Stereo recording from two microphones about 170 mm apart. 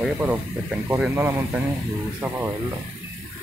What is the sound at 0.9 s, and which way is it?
Speech, 15° right (ahead or behind).